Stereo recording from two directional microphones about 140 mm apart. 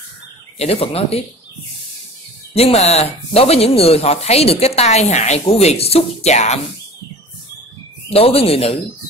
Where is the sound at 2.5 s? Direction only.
50° left (ahead or behind).